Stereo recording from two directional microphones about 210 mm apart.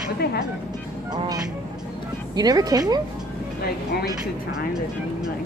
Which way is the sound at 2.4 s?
20° right (ahead or behind).